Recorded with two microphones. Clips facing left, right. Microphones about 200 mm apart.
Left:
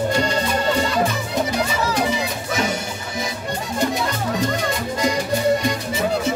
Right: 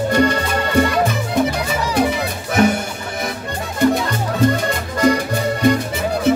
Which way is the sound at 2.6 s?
55° right (ahead or behind).